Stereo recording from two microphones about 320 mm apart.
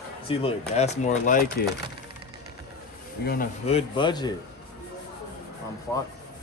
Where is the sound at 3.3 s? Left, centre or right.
Left.